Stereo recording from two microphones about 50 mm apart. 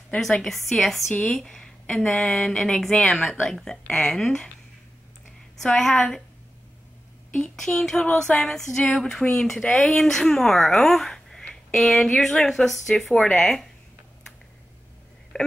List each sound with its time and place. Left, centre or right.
0.4 s a woman's voice: centre
5.6 s speech: centre
7.5 s speech: centre
13.1 s speech: centre
15.3 s telephone dialing: centre